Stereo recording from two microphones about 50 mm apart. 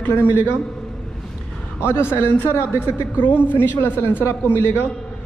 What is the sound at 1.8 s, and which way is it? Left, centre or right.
A man's voice, left.